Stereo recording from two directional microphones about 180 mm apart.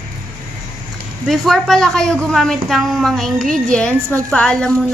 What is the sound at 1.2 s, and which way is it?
A woman's voice, centre (ahead or behind).